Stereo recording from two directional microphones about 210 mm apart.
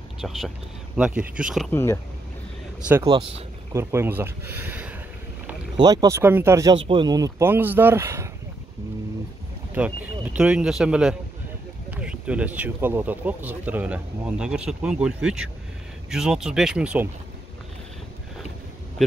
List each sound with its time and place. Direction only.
0.2 s speech: centre (ahead or behind)
1.7 s speech: 10° left (ahead or behind)
2.9 s speech: 20° right (ahead or behind)
3.7 s speech: 10° right (ahead or behind)
5.8 s speech: 20° right (ahead or behind)
9.8 s speech: 5° right (ahead or behind)